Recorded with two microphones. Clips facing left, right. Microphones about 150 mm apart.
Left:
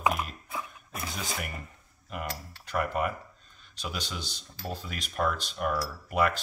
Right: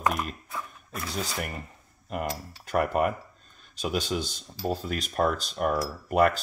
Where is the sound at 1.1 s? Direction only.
35° right (ahead or behind).